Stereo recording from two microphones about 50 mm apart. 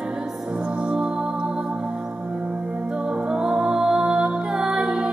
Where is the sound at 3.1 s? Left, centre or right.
Centre.